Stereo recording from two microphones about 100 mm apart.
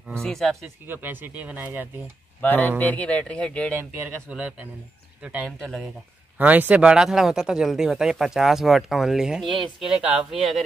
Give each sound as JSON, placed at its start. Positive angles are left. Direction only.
{"t": 0.2, "sound": "speech", "side_deg": 5}
{"t": 0.8, "sound": "speech", "side_deg": -20}
{"t": 2.4, "sound": "speech", "side_deg": 15}
{"t": 4.3, "sound": "speech", "side_deg": -10}
{"t": 5.6, "sound": "speech", "side_deg": 5}
{"t": 6.3, "sound": "speech", "side_deg": -15}